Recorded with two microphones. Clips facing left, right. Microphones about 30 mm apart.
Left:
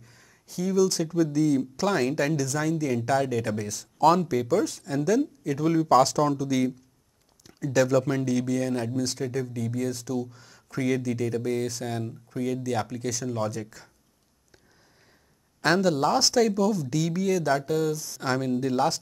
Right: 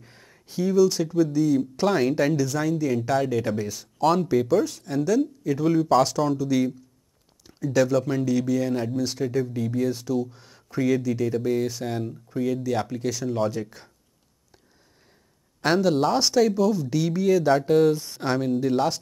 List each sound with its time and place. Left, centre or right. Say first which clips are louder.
0.0 s a sound: right 4 dB; right
0.7 s speech: right 3 dB; centre
4.0 s speech: even; centre
15.6 s speech: right 2 dB; centre; by 17.9 s right
18.2 s speech: right 2 dB; centre